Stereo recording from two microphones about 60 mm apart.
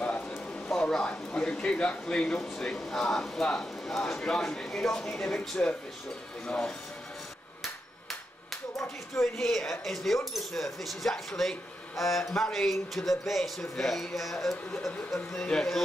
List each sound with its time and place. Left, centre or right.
0.5 s a sound: centre
1.4 s speech: centre
9.2 s speech: centre